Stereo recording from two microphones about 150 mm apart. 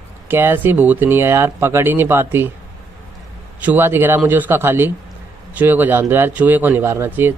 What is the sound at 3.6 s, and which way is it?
Speech, 15° right (ahead or behind).